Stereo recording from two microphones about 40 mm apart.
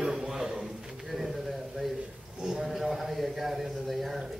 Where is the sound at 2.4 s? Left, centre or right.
Centre.